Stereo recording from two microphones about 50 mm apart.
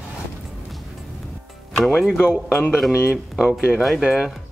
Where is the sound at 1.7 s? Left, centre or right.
Centre.